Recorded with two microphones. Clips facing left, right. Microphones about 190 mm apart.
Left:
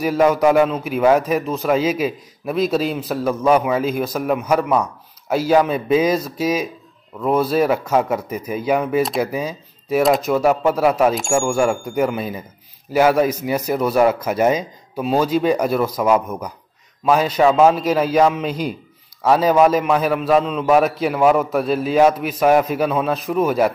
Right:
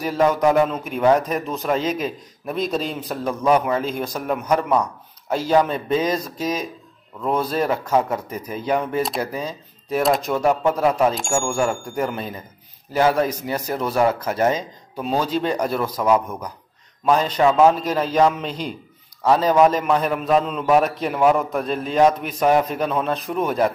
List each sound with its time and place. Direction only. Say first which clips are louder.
0.0 s a man's voice: left 3 dB; 10° left (ahead or behind)